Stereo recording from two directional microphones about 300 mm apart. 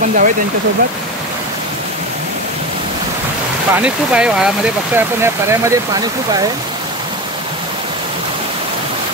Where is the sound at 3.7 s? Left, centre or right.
Centre.